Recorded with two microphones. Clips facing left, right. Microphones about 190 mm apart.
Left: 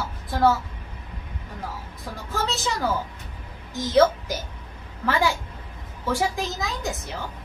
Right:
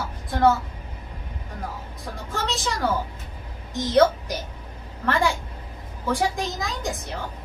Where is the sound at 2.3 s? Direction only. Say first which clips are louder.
Left 1 dB; centre (ahead or behind).